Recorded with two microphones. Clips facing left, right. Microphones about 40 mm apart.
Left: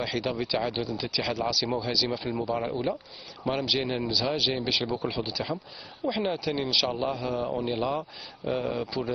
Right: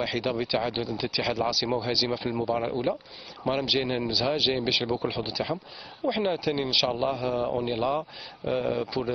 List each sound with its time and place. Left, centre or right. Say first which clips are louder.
0.1 s a man's voice: right 1 dB; centre
1.9 s speech: right 1 dB; centre
2.1 s a man's voice: right 2 dB; centre